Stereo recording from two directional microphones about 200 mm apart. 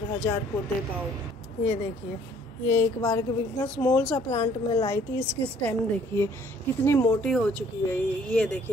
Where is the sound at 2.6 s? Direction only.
35° left (ahead or behind).